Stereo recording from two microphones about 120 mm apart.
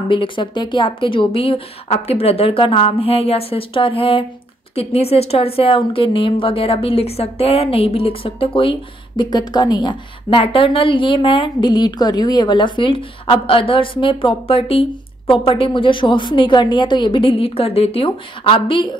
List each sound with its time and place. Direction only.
0.1 s a woman's voice: 45° left (ahead or behind)